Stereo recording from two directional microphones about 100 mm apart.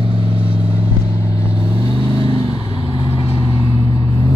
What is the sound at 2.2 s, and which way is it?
Vehicle, 55° right (ahead or behind).